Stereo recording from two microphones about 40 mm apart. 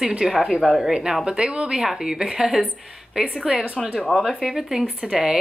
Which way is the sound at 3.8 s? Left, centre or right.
Centre.